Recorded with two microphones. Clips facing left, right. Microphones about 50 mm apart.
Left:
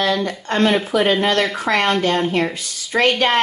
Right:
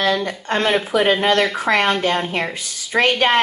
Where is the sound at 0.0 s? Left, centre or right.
Centre.